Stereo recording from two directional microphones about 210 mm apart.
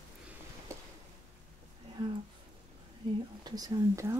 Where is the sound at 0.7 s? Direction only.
15° right (ahead or behind).